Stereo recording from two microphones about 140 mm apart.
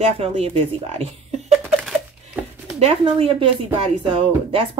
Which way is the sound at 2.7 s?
45° right (ahead or behind).